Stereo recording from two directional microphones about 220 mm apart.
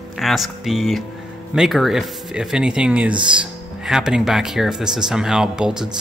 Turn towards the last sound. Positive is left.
turn(degrees=-5)  # may be behind; listen again after turning